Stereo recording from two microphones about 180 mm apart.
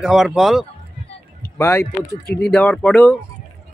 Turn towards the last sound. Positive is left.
turn(degrees=5)  # may be behind; listen again after turning